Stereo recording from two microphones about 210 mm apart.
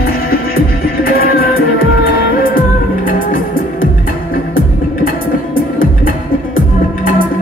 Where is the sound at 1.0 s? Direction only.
45° left (ahead or behind).